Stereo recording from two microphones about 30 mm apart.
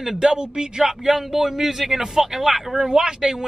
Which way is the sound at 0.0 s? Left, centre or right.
Centre.